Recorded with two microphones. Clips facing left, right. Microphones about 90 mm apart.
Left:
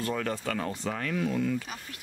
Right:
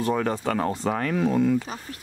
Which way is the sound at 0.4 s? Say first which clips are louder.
Right 7 dB; 40° right (ahead or behind).